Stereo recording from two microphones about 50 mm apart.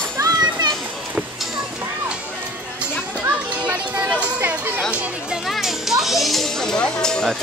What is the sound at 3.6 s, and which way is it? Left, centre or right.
Music, right.